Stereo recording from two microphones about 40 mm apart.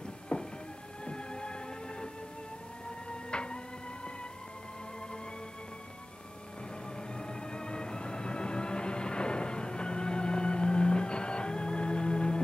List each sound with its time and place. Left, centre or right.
0.3 s a sound: left
1.0 s music: left
3.1 s music: left
7.0 s music: left